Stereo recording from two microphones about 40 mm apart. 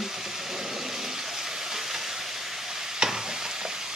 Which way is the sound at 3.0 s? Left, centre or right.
Centre.